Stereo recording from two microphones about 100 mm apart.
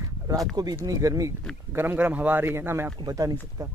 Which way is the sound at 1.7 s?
25° right (ahead or behind).